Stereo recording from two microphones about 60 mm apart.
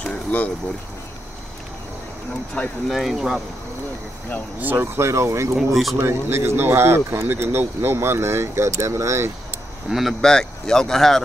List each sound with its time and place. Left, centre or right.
0.0 s a sound: left
2.6 s speech: left
2.9 s speech: centre
4.6 s speech: right
4.9 s speech: right
5.7 s speech: centre
5.9 s speech: right
9.8 s speech: centre
10.2 s speech: centre